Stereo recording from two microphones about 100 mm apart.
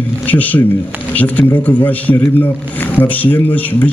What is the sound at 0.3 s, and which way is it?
A man's voice, 15° left (ahead or behind).